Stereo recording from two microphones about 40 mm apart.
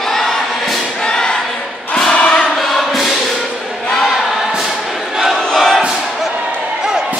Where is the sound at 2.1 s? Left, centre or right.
Left.